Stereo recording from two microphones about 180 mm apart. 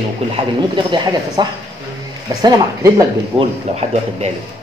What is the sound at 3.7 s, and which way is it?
Speech, 40° right (ahead or behind).